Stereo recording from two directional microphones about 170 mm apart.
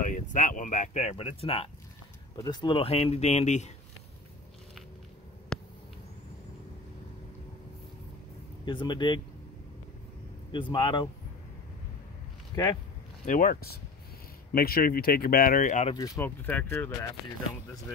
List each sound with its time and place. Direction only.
0.0 s speech: 50° left (ahead or behind); by 1.7 s 35° left (ahead or behind)
2.3 s speech: 25° left (ahead or behind); by 3.7 s 45° left (ahead or behind)
5.5 s a sound: 5° left (ahead or behind)
8.6 s speech: 25° left (ahead or behind)
10.5 s speech: 30° left (ahead or behind)
13.2 s speech: 50° left (ahead or behind)
16.2 s speech: 10° left (ahead or behind)